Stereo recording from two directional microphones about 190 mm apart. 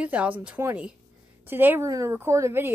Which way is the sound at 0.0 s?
5° right (ahead or behind).